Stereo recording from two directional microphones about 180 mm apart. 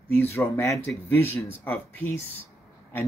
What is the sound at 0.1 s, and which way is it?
Speech, 10° left (ahead or behind).